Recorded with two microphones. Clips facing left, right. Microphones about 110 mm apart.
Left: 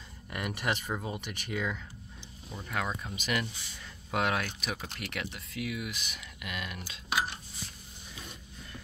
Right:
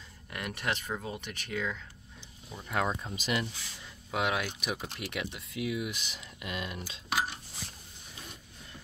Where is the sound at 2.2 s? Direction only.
5° right (ahead or behind).